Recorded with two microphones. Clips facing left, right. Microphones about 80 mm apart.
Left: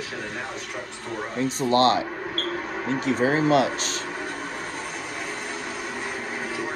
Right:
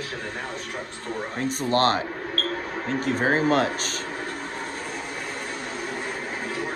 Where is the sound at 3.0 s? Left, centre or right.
Right.